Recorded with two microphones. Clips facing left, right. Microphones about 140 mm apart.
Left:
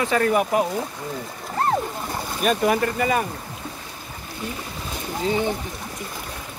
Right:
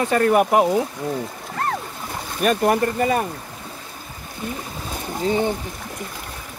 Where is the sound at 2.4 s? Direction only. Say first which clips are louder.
Right 2 dB; 50° right (ahead or behind).